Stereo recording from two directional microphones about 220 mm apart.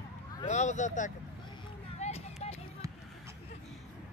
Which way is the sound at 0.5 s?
30° left (ahead or behind).